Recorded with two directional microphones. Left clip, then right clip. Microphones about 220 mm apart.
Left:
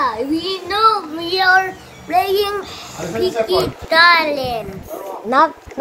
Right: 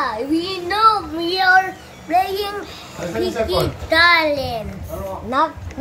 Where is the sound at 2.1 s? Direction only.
60° left (ahead or behind).